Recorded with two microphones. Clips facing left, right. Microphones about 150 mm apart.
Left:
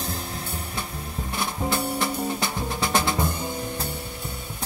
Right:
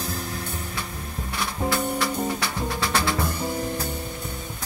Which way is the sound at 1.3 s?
20° left (ahead or behind).